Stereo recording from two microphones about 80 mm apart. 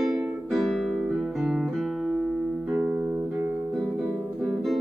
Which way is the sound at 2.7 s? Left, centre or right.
Centre.